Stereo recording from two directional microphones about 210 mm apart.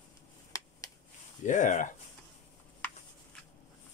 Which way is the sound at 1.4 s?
35° left (ahead or behind).